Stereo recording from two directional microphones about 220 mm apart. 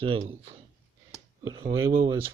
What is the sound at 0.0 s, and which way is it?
Speech, 25° right (ahead or behind).